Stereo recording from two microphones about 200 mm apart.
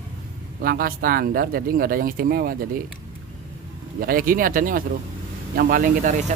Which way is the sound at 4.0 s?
45° right (ahead or behind).